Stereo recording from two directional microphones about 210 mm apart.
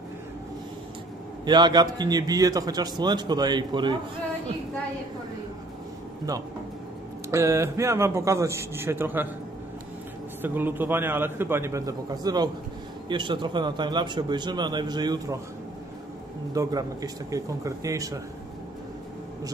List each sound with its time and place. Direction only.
1.4 s a man's voice: 20° right (ahead or behind)
7.2 s a man's voice: 15° right (ahead or behind)
10.4 s a man's voice: 10° right (ahead or behind)
16.5 s a man's voice: 15° right (ahead or behind)